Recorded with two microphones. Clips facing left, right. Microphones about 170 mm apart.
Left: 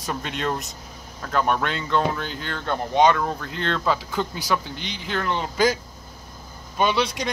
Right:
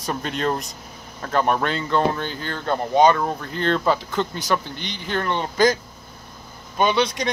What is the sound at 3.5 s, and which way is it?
Speech, 40° right (ahead or behind).